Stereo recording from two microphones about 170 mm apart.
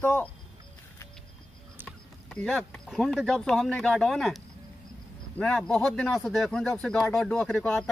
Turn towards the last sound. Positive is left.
turn(degrees=5)  # may be behind; listen again after turning